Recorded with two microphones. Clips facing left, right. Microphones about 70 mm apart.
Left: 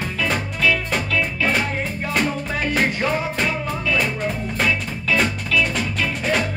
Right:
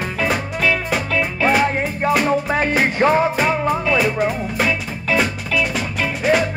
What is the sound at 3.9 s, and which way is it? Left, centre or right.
Music, centre.